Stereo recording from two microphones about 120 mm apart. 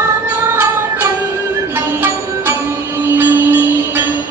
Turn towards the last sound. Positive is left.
turn(degrees=-15)  # may be behind; listen again after turning